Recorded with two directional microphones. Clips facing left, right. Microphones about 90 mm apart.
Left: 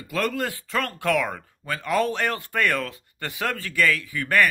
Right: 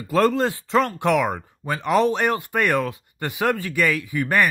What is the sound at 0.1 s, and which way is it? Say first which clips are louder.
Speech: right 7 dB; 30° right (ahead or behind).